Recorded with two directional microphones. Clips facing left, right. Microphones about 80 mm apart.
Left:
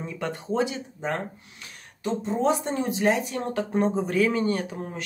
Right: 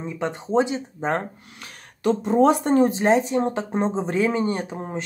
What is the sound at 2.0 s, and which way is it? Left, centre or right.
Speech, right.